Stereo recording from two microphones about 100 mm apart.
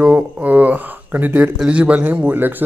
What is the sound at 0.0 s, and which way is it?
Speech, 15° right (ahead or behind).